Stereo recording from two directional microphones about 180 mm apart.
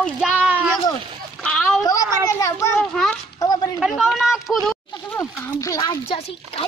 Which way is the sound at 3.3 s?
20° left (ahead or behind).